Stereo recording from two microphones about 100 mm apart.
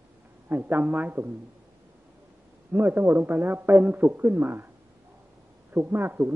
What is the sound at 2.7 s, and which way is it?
A man's voice, 20° right (ahead or behind).